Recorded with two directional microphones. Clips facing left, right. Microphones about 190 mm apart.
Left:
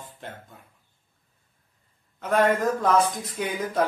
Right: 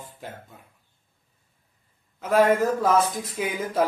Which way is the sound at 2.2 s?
5° right (ahead or behind).